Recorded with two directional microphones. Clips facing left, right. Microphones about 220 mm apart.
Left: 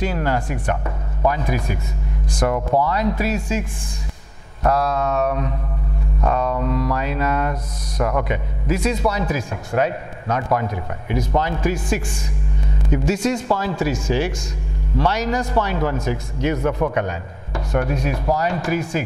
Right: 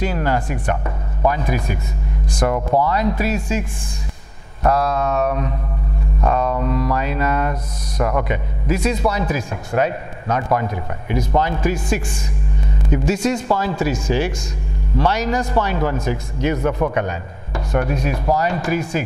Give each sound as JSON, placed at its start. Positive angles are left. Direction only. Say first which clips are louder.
{"t": 0.0, "sound": "a man's voice", "louder": "right 1 dB", "side_deg": -15}
{"t": 2.5, "sound": "speech", "louder": "right 1 dB", "side_deg": -25}
{"t": 2.9, "sound": "a man's voice", "louder": "right 1 dB", "side_deg": -10}